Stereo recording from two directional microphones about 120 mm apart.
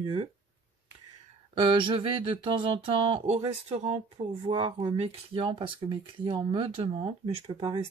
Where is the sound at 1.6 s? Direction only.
45° right (ahead or behind); by 4.0 s 65° right (ahead or behind).